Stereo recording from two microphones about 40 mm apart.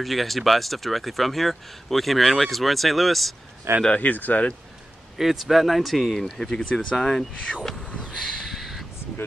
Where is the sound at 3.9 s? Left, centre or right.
Left.